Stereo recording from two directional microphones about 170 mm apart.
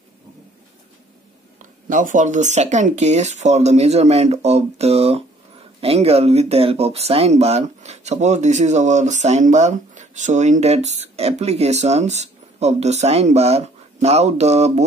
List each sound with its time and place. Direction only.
1.6 s speech: 50° right (ahead or behind)